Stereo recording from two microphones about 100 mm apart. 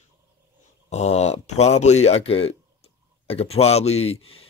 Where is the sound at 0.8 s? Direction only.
90° left.